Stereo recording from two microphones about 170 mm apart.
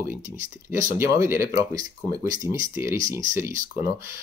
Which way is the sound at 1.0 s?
15° right (ahead or behind).